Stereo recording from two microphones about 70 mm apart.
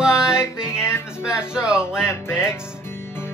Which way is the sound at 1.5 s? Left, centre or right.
Centre.